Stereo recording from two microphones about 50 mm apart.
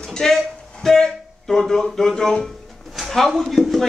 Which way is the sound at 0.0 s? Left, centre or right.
Centre.